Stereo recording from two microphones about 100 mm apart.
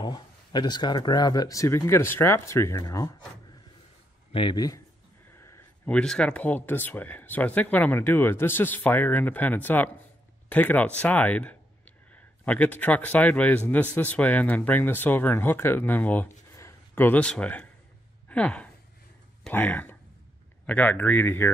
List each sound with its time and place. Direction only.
0.0 s speech: 45° left (ahead or behind)
4.3 s a man's voice: 60° left (ahead or behind)
4.6 s speech: 35° left (ahead or behind)
5.9 s speech: 10° left (ahead or behind)
18.3 s a sound: 10° left (ahead or behind)
19.5 s speech: 15° left (ahead or behind)